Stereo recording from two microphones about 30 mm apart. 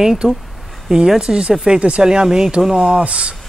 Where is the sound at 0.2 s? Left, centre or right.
Right.